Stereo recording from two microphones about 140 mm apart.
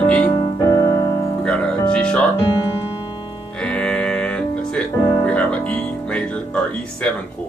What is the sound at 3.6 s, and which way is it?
Music, 5° left (ahead or behind).